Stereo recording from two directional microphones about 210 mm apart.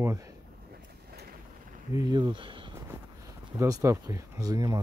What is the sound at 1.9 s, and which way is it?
Speech, 20° right (ahead or behind).